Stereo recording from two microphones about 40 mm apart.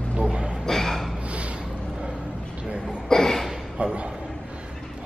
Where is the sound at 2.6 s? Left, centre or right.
Right.